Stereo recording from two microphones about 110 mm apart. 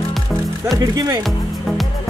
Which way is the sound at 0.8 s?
30° right (ahead or behind).